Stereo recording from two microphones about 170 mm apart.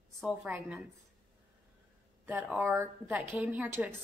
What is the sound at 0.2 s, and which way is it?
Speech, 5° right (ahead or behind).